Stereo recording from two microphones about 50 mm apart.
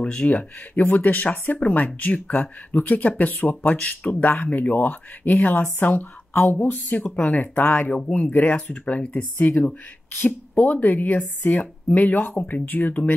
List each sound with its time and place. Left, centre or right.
0.0 s speech: left
1.3 s speech: left
1.6 s speech: left
10.1 s speech: left